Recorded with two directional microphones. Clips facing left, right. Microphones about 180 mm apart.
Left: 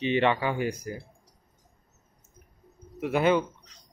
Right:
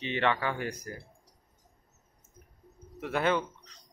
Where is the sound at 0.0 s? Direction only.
15° left (ahead or behind).